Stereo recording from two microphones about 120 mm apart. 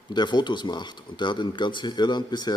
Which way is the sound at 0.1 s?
35° left (ahead or behind).